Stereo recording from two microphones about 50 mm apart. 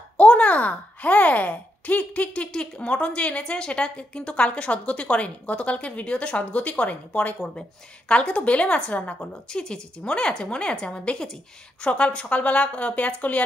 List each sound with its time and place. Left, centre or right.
0.2 s speech: left